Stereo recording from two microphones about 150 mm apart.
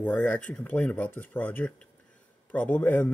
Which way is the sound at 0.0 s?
10° left (ahead or behind).